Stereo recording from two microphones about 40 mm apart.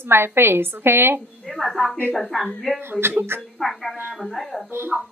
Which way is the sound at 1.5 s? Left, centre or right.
Centre.